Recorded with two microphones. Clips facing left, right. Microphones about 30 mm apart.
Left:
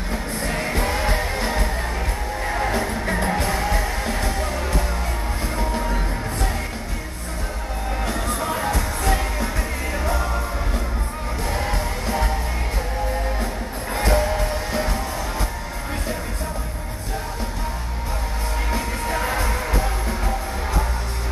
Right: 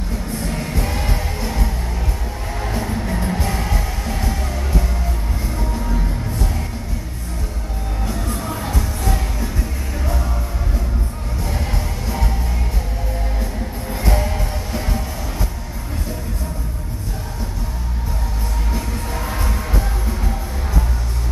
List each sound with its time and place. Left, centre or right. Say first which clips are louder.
0.1 s music: left 1 dB; left
3.1 s music: left 1 dB; left
5.6 s music: left 1 dB; left
8.3 s music: left 2 dB; left
11.4 s music: left 2 dB; left
14.1 s music: left 4 dB; centre
18.7 s music: left 2 dB; left